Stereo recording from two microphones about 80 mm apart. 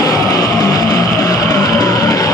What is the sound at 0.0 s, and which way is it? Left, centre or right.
Music, left.